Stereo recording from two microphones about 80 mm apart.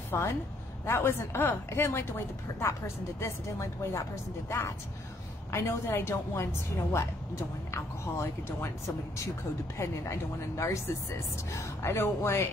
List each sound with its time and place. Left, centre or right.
0.1 s a woman's voice: left